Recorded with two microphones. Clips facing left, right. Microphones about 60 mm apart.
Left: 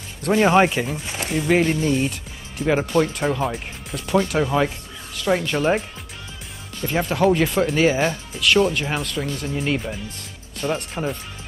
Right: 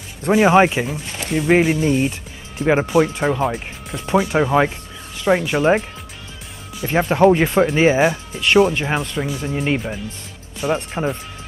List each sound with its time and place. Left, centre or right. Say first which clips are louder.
0.2 s speech: right 3 dB; centre
1.5 s speech: right 3 dB; centre
6.9 s speech: right 5 dB; right
8.9 s speech: right 3 dB; centre
10.6 s speech: right 4 dB; centre